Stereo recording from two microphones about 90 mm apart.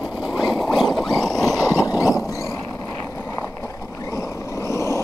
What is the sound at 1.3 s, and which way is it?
Vehicle, 40° left (ahead or behind).